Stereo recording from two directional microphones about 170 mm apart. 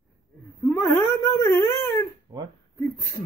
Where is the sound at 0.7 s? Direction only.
15° left (ahead or behind).